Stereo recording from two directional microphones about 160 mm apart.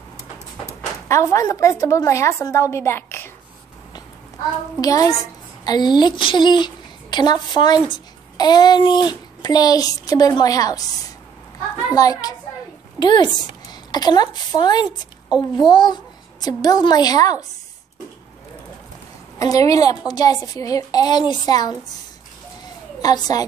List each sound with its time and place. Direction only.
1.0 s a woman's voice: 20° left (ahead or behind)
4.7 s a woman's voice: 25° left (ahead or behind)
11.9 s a woman's voice: 20° left (ahead or behind)
14.9 s a woman's voice: 5° right (ahead or behind)
15.5 s a woman's voice: 25° left (ahead or behind)
19.3 s a woman's voice: 20° left (ahead or behind)
23.0 s a woman's voice: 25° left (ahead or behind)